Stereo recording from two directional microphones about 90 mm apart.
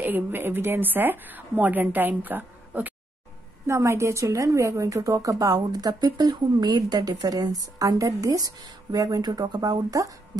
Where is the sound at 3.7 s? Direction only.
30° right (ahead or behind).